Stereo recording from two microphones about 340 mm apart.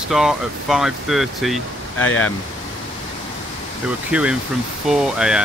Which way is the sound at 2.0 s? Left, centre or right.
Left.